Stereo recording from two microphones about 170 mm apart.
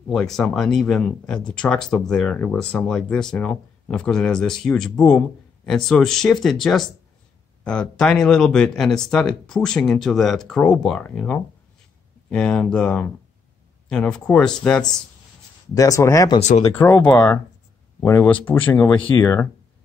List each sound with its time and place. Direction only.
0.1 s speech: centre (ahead or behind)
15.7 s speech: 20° left (ahead or behind)
16.3 s speech: 45° left (ahead or behind)
16.6 s speech: 10° left (ahead or behind)